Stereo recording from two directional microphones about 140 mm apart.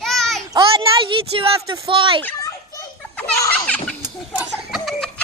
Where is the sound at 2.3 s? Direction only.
25° left (ahead or behind).